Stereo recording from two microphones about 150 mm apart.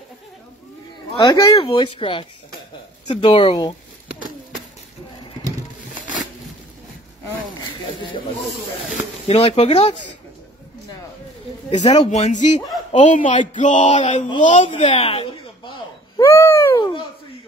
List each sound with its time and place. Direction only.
1.2 s speech: 20° left (ahead or behind)
1.6 s speech: 35° left (ahead or behind)
9.3 s speech: 45° left (ahead or behind)
11.7 s speech: 50° left (ahead or behind)
14.7 s speech: 40° left (ahead or behind)
16.2 s a sound: 20° left (ahead or behind)